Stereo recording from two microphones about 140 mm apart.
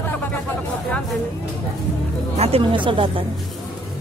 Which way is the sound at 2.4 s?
45° right (ahead or behind).